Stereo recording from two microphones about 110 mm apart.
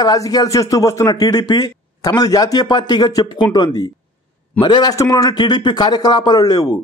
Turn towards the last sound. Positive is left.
turn(degrees=35)  # may be behind; listen again after turning